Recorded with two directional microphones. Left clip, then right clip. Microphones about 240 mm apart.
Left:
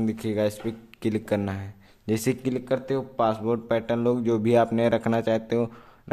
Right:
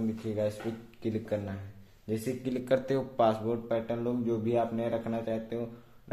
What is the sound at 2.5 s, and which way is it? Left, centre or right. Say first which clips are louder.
A man's voice: left 2 dB; centre.